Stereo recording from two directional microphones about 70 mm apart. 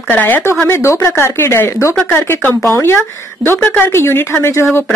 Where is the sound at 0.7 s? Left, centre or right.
Left.